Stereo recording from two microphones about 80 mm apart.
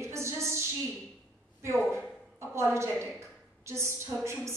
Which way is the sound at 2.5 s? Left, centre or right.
Right.